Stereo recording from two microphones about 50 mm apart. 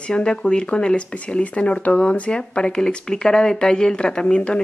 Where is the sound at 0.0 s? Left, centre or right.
Centre.